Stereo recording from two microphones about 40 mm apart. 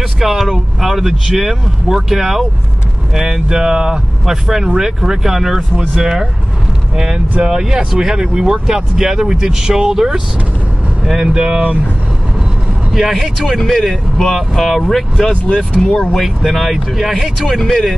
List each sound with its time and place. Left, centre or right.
0.2 s speech: centre
7.4 s speech: centre
11.2 s speech: centre
12.9 s speech: centre
15.4 s speech: left
16.0 s speech: centre
17.2 s speech: centre